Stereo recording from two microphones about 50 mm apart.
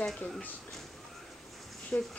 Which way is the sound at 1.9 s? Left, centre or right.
Left.